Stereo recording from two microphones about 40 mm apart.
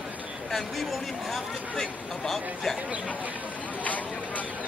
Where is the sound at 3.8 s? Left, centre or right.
Left.